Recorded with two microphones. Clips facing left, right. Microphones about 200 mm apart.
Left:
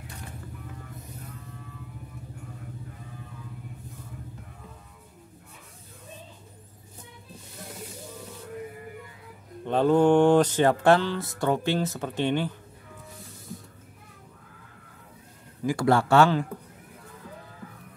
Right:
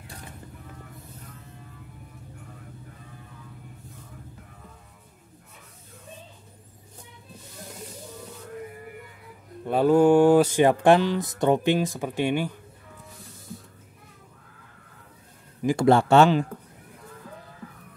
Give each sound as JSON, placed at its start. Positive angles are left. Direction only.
{"t": 9.7, "sound": "speech", "side_deg": -10}
{"t": 15.6, "sound": "speech", "side_deg": -25}